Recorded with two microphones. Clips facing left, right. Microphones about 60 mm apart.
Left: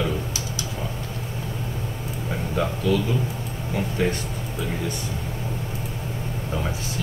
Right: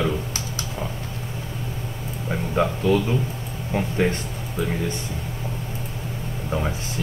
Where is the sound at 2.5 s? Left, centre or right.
Right.